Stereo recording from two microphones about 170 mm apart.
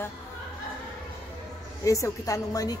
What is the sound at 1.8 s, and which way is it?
Speech, 20° left (ahead or behind).